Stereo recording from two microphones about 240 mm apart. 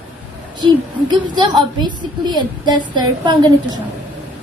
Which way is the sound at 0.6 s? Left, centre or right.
Centre.